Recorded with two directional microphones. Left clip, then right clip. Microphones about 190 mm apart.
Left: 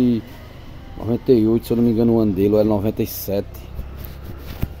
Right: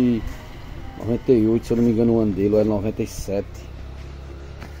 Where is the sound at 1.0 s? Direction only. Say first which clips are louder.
Left 2 dB; 15° left (ahead or behind).